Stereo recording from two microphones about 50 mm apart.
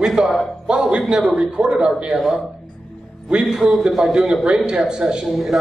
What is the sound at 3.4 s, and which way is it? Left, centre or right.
A man's voice, centre.